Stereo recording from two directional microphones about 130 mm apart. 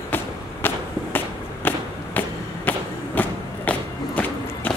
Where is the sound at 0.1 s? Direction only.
15° left (ahead or behind).